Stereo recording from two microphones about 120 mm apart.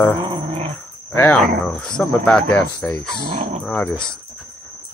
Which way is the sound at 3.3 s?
65° right (ahead or behind).